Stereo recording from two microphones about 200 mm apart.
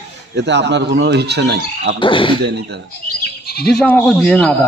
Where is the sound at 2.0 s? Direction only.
25° left (ahead or behind).